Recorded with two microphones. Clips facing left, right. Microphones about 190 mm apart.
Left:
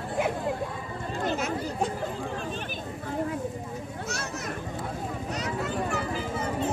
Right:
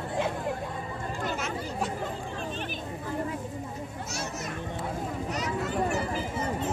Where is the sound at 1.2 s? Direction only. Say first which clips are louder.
Left 5 dB; 35° left (ahead or behind).